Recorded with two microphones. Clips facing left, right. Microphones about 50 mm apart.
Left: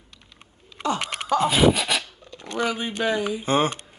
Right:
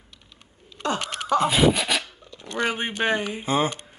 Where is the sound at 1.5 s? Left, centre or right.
Centre.